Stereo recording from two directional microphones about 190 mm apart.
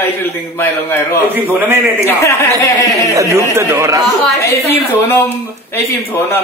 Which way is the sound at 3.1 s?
15° right (ahead or behind).